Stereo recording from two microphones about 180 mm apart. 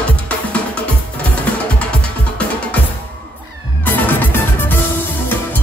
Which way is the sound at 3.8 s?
10° left (ahead or behind).